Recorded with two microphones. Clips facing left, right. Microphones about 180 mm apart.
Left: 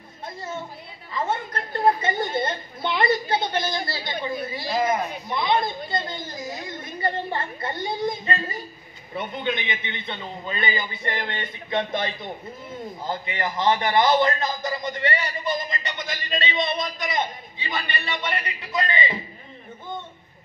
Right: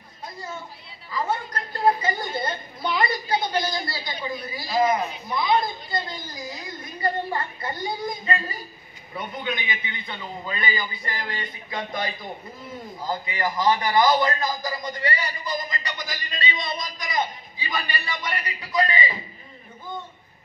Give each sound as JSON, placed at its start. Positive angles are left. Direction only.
{"t": 1.1, "sound": "a man's voice", "side_deg": 25}